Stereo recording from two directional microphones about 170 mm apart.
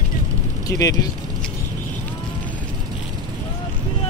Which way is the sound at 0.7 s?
20° left (ahead or behind).